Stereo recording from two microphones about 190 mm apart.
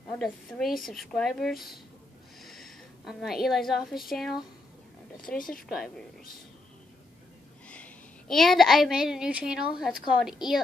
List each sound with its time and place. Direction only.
0.1 s a woman's voice: centre (ahead or behind)
5.4 s speech: 45° left (ahead or behind)
7.6 s a child's voice: 5° left (ahead or behind)